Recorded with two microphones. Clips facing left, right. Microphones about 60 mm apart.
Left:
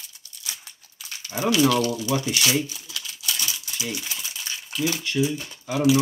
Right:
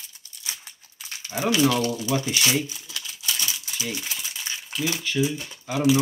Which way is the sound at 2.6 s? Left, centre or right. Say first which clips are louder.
Even; right.